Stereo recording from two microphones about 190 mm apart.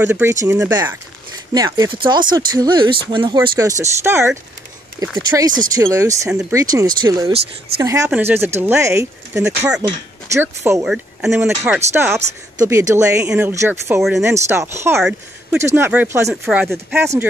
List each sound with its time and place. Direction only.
0.0 s speech: 10° right (ahead or behind)
16.4 s speech: 5° right (ahead or behind)
16.7 s speech: 15° right (ahead or behind)